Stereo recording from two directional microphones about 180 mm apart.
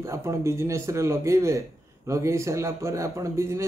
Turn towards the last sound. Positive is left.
turn(degrees=-15)  # may be behind; listen again after turning